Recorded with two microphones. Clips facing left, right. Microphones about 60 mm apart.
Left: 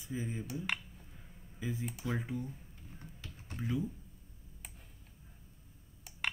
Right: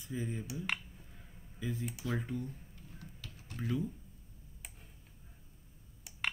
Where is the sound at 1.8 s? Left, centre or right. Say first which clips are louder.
Even; centre.